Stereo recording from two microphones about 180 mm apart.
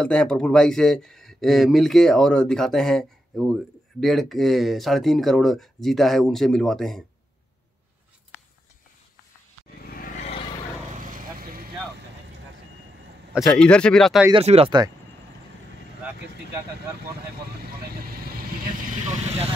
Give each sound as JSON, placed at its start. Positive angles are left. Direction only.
{"t": 0.0, "sound": "speech", "side_deg": 5}
{"t": 9.8, "sound": "vehicle", "side_deg": 55}
{"t": 10.9, "sound": "vehicle", "side_deg": -45}
{"t": 13.3, "sound": "speech", "side_deg": 0}
{"t": 14.3, "sound": "speech", "side_deg": -35}
{"t": 19.0, "sound": "vehicle", "side_deg": -35}